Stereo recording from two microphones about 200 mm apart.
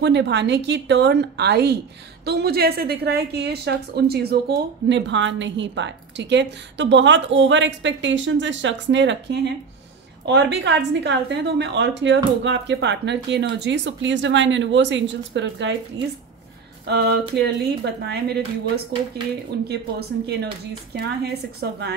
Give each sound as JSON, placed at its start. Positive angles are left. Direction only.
{"t": 0.0, "sound": "a woman's voice", "side_deg": -60}
{"t": 16.8, "sound": "a woman's voice", "side_deg": -55}
{"t": 19.7, "sound": "a woman's voice", "side_deg": -55}